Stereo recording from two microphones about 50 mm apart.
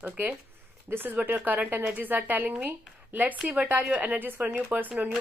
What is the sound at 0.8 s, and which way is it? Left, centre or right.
Speech, right.